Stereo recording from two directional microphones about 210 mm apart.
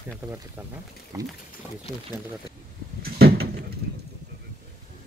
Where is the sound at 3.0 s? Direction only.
50° right (ahead or behind).